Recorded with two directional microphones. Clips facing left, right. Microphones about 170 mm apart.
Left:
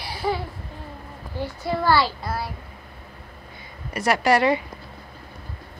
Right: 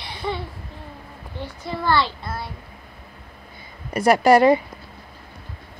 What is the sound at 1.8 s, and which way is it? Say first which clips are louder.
Speech: even; 5° left (ahead or behind).